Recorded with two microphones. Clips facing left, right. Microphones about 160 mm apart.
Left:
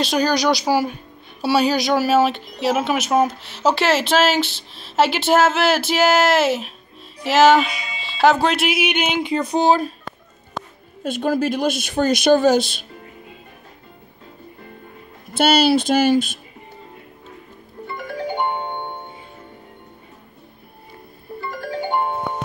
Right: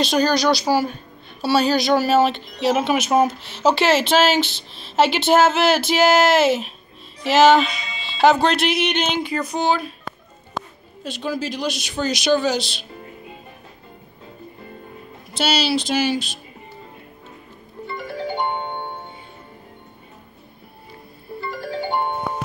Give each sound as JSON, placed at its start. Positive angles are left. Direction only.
{"t": 0.0, "sound": "a woman's voice", "side_deg": 10}
{"t": 9.3, "sound": "speech", "side_deg": 25}
{"t": 11.1, "sound": "speech", "side_deg": 50}
{"t": 15.3, "sound": "speech", "side_deg": 50}
{"t": 17.9, "sound": "music", "side_deg": 15}
{"t": 22.0, "sound": "music", "side_deg": 0}